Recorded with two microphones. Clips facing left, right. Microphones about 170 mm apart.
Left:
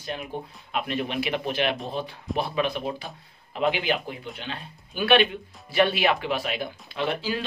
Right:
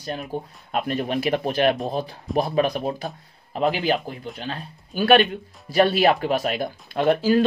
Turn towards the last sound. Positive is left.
turn(degrees=-45)  # may be behind; listen again after turning